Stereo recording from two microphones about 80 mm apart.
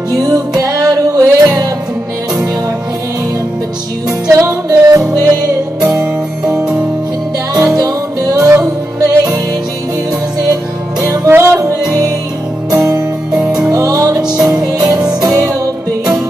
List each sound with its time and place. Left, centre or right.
0.1 s music: right
4.3 s music: right
7.5 s music: right
10.4 s music: right
11.1 s music: right
11.5 s music: right
13.3 s music: centre
13.7 s music: right